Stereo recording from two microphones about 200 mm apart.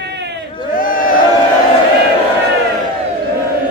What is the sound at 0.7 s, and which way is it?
Crowd, 45° left (ahead or behind).